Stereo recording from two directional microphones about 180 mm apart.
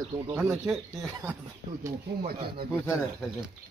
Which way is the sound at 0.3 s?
15° right (ahead or behind).